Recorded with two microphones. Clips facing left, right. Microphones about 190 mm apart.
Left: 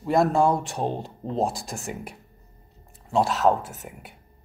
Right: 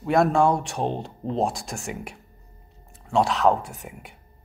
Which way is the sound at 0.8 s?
20° right (ahead or behind).